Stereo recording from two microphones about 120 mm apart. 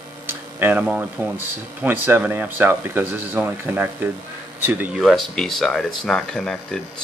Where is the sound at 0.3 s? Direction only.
15° right (ahead or behind).